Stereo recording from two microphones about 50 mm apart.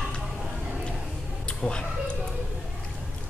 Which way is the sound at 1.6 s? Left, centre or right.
Centre.